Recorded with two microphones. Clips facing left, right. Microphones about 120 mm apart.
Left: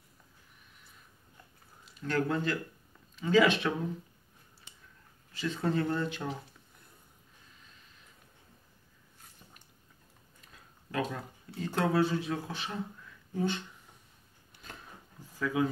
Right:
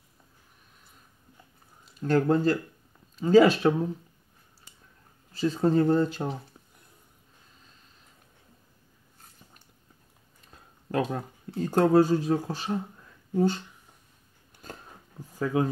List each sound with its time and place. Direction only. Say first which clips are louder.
2.0 s speech: right 8 dB; 40° right (ahead or behind)
5.3 s speech: right 8 dB; 35° right (ahead or behind)
10.5 s speech: right 7 dB; 45° right (ahead or behind)
14.5 s biting: right 6 dB; 45° right (ahead or behind)
15.3 s speech: right 4 dB; 40° right (ahead or behind)